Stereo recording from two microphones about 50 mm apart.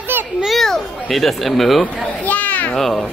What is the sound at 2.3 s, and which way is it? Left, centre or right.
Children playing, left.